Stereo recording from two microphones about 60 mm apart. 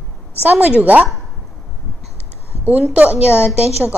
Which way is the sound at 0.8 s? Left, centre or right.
Right.